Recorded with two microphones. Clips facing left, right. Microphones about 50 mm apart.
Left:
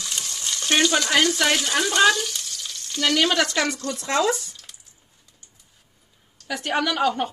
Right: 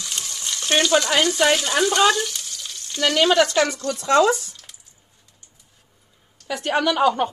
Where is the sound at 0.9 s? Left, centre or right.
Centre.